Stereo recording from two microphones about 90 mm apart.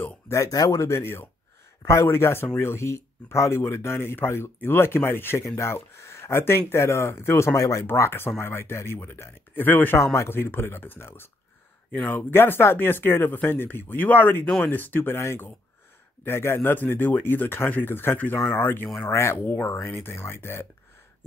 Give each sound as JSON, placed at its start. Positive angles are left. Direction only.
{"t": 0.0, "sound": "speech", "side_deg": 35}
{"t": 7.8, "sound": "speech", "side_deg": 25}